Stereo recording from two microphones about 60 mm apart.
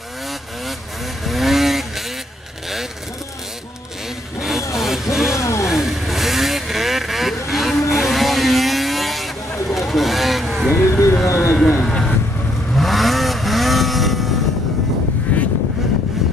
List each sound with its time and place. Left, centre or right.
1.2 s vehicle: centre
4.4 s vehicle: centre
4.7 s music: centre
5.3 s a sound: left
5.7 s vehicle: centre
10.7 s vehicle: left
11.8 s vehicle: centre
12.7 s vehicle: centre
15.3 s a sound: left